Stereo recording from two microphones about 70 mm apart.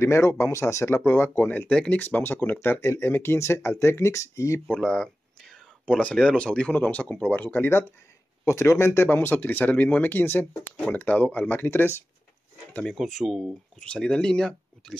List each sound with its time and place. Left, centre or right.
0.0 s speech: left
1.7 s speech: centre
2.0 s speech: left
4.6 s speech: centre
8.5 s speech: left
12.8 s speech: centre
13.7 s speech: centre